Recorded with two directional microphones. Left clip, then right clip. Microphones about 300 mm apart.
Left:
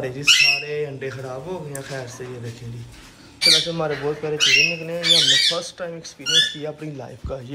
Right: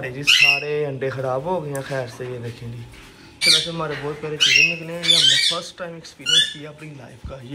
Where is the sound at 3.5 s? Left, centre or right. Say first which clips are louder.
Even; centre.